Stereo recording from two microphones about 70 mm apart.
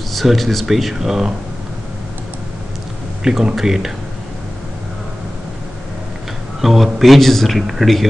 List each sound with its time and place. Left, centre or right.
0.1 s a man's voice: centre
3.3 s a man's voice: centre
6.6 s a man's voice: centre